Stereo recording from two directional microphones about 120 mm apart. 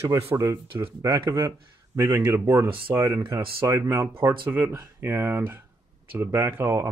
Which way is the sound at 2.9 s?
25° right (ahead or behind).